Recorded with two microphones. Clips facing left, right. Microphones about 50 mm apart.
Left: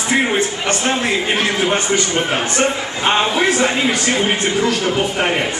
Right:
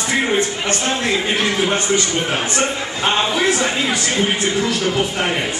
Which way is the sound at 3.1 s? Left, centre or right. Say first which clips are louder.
Left 2 dB; centre.